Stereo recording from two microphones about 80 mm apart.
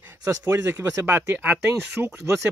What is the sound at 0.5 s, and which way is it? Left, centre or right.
Speech, right.